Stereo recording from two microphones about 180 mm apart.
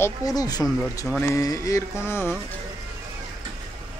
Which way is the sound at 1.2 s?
15° left (ahead or behind).